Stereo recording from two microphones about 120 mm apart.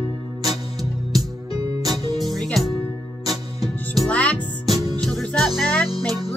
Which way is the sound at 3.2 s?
35° right (ahead or behind).